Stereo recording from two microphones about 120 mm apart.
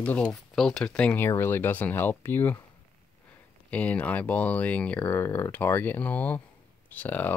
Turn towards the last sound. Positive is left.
turn(degrees=15)  # may be behind; listen again after turning